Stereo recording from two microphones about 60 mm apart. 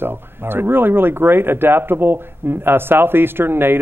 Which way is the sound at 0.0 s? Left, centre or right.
Right.